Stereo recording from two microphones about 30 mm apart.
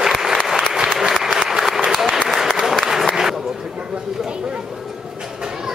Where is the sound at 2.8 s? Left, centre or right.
Centre.